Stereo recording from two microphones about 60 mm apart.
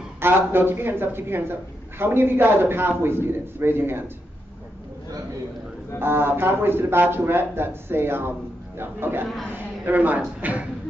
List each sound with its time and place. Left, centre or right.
0.2 s a man's voice: right
5.9 s a man's voice: right